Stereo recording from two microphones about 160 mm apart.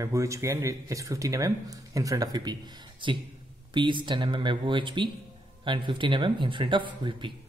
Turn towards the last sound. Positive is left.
turn(degrees=-30)  # may be behind; listen again after turning